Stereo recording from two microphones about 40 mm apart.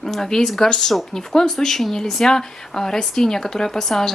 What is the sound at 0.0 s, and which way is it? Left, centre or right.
Speech, centre.